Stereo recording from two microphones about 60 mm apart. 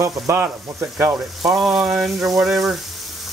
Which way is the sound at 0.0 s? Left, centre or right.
Right.